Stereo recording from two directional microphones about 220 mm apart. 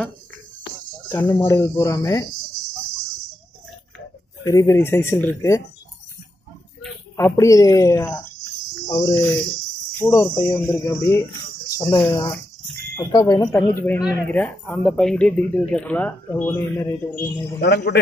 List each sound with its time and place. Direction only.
1.0 s speech: 15° left (ahead or behind)
4.4 s speech: 10° left (ahead or behind)
6.8 s speech: 10° left (ahead or behind)
8.8 s cricket: 15° left (ahead or behind)
9.9 s speech: 10° left (ahead or behind)
17.6 s speech: 45° left (ahead or behind)